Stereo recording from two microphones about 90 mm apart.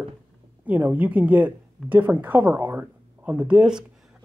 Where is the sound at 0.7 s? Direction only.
20° right (ahead or behind).